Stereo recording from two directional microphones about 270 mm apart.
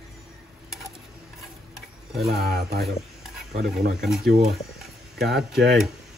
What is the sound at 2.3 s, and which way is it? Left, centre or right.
Speech, right.